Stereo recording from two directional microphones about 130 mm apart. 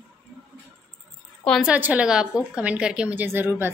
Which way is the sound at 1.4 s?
5° left (ahead or behind).